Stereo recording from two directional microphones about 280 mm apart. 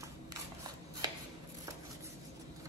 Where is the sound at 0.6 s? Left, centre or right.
Centre.